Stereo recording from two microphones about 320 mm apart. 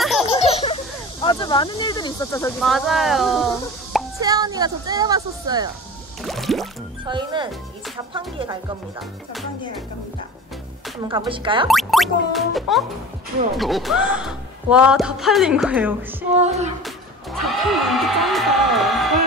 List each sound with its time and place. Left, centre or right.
0.3 s baby laughter: centre
1.2 s speech: centre
4.2 s speech: centre
6.2 s a man's voice: centre
7.1 s speech: centre
11.0 s speech: centre
11.6 s a man's voice: centre
16.3 s music: centre
16.8 s speech: centre